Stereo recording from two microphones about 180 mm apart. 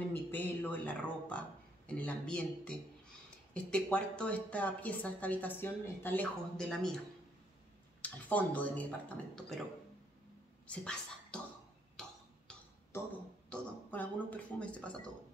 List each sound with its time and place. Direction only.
0.1 s a woman's voice: 10° left (ahead or behind)
8.0 s a woman's voice: 10° left (ahead or behind)
10.7 s speech: 5° left (ahead or behind)
13.5 s a woman's voice: 10° left (ahead or behind)